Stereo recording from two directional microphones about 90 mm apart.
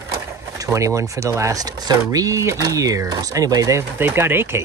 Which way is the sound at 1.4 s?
40° right (ahead or behind).